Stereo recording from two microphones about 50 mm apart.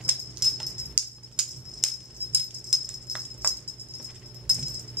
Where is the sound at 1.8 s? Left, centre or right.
Centre.